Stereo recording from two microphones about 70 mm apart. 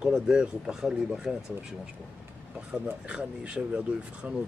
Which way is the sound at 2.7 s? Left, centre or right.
Centre.